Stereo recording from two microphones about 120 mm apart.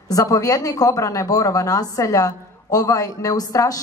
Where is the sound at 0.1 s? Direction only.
30° left (ahead or behind).